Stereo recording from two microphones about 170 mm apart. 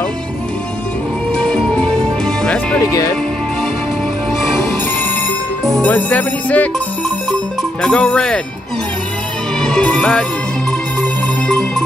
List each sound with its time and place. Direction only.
1.3 s music: 5° left (ahead or behind)
2.8 s music: 20° left (ahead or behind)
5.7 s music: 10° left (ahead or behind)
7.8 s speech: 5° left (ahead or behind)
9.6 s music: 5° left (ahead or behind)